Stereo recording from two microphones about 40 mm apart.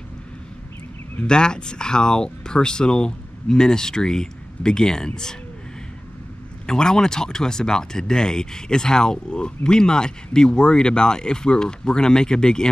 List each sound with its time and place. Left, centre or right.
1.2 s speech: left
6.6 s speech: centre